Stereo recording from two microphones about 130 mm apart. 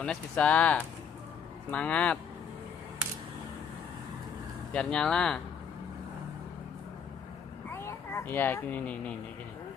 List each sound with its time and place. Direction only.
0.0 s speech: 10° left (ahead or behind)
4.7 s speech: 5° left (ahead or behind)
7.7 s speech: 20° left (ahead or behind)